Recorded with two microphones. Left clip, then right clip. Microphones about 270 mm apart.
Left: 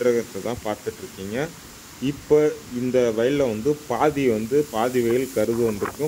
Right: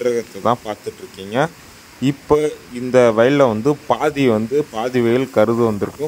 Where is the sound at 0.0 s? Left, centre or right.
Right.